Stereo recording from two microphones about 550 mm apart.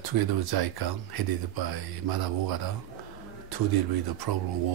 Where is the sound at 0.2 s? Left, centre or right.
Right.